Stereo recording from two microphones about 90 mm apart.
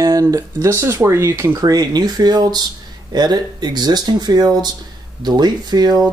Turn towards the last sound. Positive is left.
turn(degrees=-50)  # may be behind; listen again after turning